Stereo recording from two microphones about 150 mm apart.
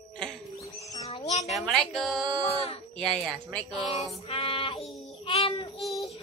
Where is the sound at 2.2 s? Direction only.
30° right (ahead or behind).